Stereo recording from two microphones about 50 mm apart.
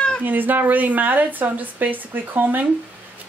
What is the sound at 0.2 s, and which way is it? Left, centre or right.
Speech, right.